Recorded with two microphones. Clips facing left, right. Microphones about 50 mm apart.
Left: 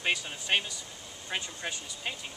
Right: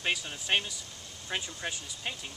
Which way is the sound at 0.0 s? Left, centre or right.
Centre.